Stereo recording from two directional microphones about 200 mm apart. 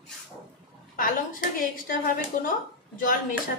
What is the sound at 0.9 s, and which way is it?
Speech, 45° left (ahead or behind).